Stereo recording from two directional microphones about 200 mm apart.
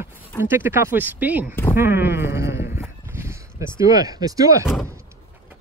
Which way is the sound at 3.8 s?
20° right (ahead or behind).